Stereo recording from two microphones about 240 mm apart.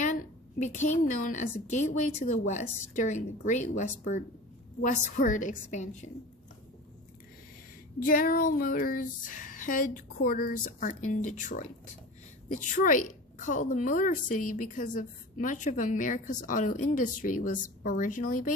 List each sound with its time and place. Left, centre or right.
0.0 s a woman's voice: left
8.0 s a woman's voice: left